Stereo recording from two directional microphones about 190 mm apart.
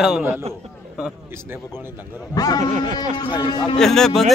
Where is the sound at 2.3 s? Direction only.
20° left (ahead or behind).